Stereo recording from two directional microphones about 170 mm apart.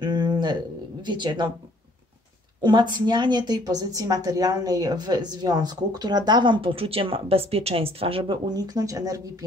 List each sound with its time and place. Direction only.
0.0 s a sound: 25° right (ahead or behind)
1.0 s a woman's voice: 25° right (ahead or behind)
2.6 s a woman's voice: 25° right (ahead or behind)